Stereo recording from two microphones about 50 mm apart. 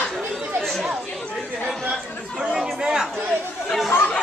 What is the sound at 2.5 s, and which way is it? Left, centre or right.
Chatter, centre.